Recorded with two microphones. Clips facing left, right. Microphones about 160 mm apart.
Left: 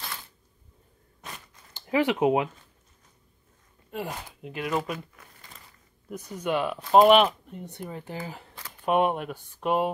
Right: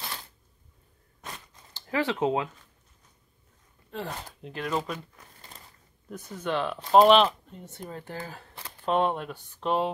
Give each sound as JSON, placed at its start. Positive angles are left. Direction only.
{"t": 1.7, "sound": "speech", "side_deg": 15}
{"t": 3.9, "sound": "speech", "side_deg": 10}